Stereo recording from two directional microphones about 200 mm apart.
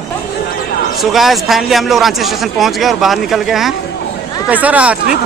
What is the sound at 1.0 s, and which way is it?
A man's voice, centre (ahead or behind).